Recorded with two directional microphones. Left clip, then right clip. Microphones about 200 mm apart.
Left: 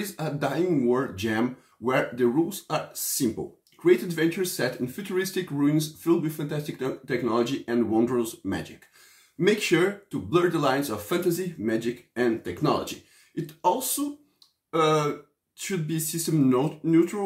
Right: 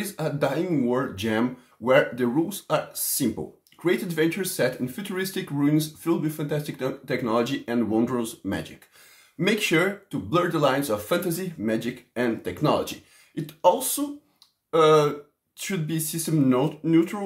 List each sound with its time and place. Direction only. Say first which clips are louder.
0.0 s speech: right 3 dB; 20° right (ahead or behind)